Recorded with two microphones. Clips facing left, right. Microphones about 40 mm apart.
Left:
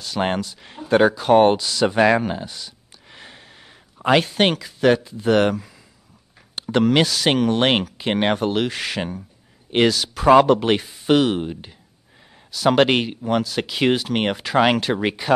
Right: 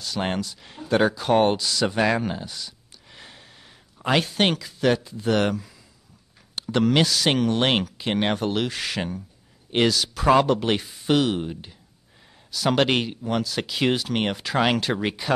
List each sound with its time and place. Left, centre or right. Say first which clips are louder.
0.0 s speech: left 4 dB; left